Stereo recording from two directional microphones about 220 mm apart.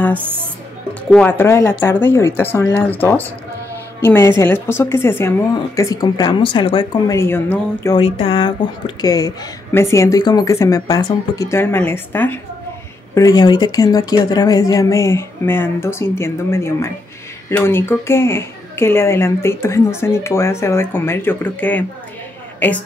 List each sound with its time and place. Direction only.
1.1 s a woman's voice: 10° left (ahead or behind)
8.0 s a woman's voice: 25° left (ahead or behind); by 22.8 s 10° left (ahead or behind)